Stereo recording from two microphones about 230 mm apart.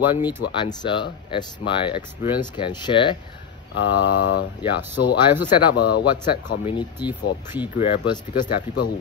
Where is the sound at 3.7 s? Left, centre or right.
Left.